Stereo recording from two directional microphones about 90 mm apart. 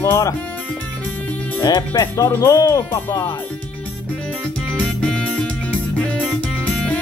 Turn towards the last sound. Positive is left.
turn(degrees=10)  # may be behind; listen again after turning